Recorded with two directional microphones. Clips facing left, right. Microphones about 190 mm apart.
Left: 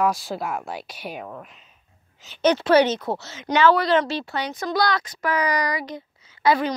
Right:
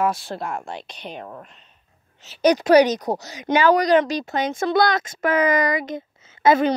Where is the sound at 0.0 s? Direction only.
Centre (ahead or behind).